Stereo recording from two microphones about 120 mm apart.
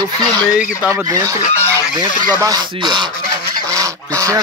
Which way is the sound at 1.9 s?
35° right (ahead or behind).